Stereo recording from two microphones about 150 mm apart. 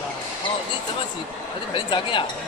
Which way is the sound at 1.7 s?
35° left (ahead or behind).